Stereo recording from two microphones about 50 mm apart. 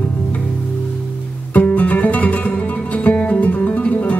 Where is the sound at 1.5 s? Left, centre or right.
Left.